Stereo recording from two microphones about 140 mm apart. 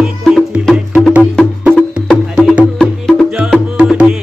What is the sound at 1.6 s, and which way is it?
Music, 5° right (ahead or behind).